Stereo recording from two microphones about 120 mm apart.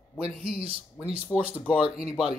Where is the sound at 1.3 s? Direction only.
25° left (ahead or behind).